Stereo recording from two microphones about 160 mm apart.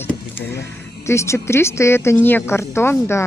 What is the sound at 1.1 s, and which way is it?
Speech, 15° left (ahead or behind).